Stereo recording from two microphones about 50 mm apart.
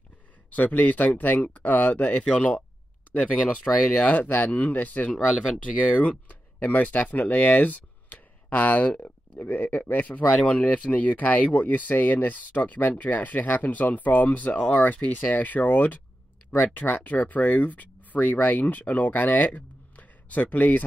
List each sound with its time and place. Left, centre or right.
0.5 s speech: left